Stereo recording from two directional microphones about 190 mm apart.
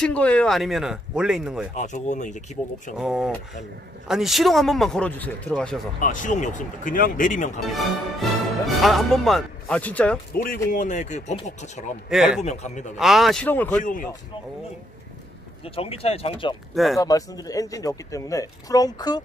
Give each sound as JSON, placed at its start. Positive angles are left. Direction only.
{"t": 0.0, "sound": "speech", "side_deg": 5}
{"t": 1.8, "sound": "speech", "side_deg": 40}
{"t": 3.0, "sound": "speech", "side_deg": 0}
{"t": 5.9, "sound": "speech", "side_deg": 45}
{"t": 7.6, "sound": "speech", "side_deg": 0}
{"t": 10.3, "sound": "speech", "side_deg": 50}
{"t": 12.1, "sound": "speech", "side_deg": 0}
{"t": 12.4, "sound": "speech", "side_deg": 35}
{"t": 12.9, "sound": "speech", "side_deg": 0}
{"t": 15.6, "sound": "speech", "side_deg": 30}
{"t": 16.7, "sound": "speech", "side_deg": 0}
{"t": 17.0, "sound": "speech", "side_deg": 20}